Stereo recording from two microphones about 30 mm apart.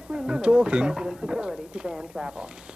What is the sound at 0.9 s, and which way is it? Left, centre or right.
Speech, right.